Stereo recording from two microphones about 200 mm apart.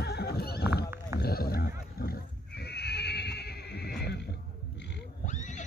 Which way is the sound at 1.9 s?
50° left (ahead or behind).